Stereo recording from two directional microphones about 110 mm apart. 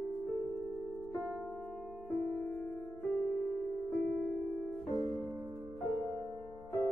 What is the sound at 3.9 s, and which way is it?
Music, centre (ahead or behind).